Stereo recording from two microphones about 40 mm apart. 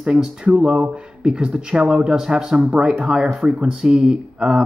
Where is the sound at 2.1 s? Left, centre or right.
Centre.